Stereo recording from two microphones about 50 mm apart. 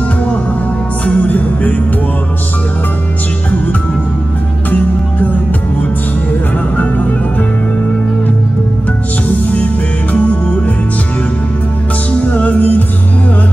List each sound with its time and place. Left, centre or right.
1.0 s music: left
4.6 s music: left
10.1 s music: left
12.1 s music: left